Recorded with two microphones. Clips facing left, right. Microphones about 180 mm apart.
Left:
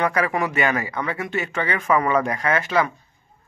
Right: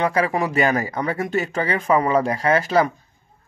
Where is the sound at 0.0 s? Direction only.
30° right (ahead or behind).